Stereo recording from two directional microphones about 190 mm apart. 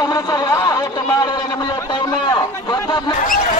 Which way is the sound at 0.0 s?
20° left (ahead or behind).